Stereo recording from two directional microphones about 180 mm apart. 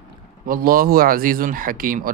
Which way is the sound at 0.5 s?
55° right (ahead or behind).